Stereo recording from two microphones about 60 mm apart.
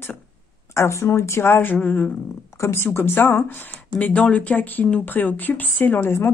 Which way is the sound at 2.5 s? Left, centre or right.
Left.